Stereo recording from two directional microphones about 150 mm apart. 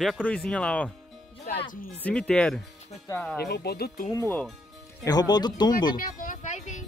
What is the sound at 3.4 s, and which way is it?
Speech, 90° left.